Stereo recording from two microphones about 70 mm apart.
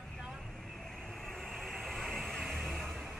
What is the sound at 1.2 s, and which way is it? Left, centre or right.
Vehicle, centre.